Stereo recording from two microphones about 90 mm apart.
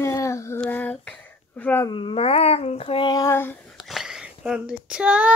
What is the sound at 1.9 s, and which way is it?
Dog, 80° left.